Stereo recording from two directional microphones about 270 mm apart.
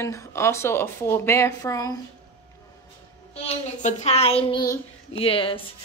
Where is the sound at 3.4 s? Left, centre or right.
Left.